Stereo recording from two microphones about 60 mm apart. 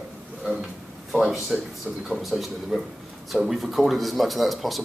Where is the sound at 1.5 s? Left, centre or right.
Centre.